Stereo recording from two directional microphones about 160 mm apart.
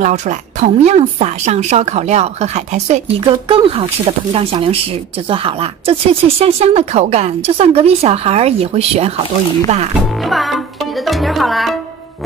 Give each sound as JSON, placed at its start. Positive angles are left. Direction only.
{"t": 0.0, "sound": "speech", "side_deg": -50}
{"t": 3.3, "sound": "speech", "side_deg": -35}
{"t": 10.2, "sound": "speech", "side_deg": 0}